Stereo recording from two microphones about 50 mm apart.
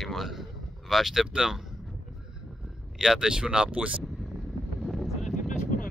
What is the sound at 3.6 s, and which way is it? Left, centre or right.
Speech, right.